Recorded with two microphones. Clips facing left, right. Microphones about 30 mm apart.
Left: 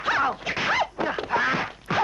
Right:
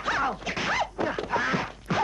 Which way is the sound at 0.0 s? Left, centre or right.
Centre.